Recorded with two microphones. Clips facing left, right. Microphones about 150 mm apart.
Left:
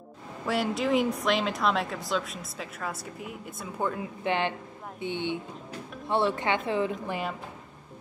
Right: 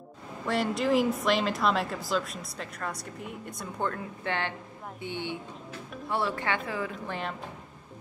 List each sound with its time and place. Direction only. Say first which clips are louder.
0.5 s a woman's voice: even; centre (ahead or behind); by 6.9 s 20° left (ahead or behind)
7.1 s speech: left 3 dB; 10° left (ahead or behind)